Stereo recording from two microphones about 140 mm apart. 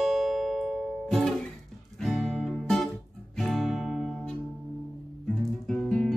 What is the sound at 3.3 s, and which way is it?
Guitar, centre (ahead or behind).